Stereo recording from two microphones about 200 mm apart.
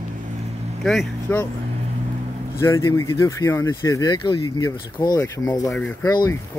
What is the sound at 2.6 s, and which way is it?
Speech, 15° left (ahead or behind).